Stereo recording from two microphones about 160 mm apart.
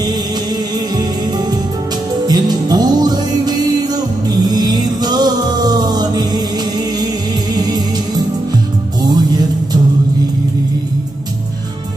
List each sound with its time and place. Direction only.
2.2 s music: 25° right (ahead or behind)
9.0 s music: 25° right (ahead or behind)